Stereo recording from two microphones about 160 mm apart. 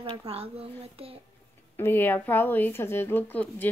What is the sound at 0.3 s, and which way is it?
Speech, 40° right (ahead or behind).